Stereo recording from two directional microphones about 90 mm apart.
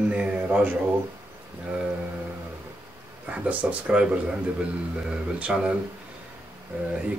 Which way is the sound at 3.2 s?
15° right (ahead or behind).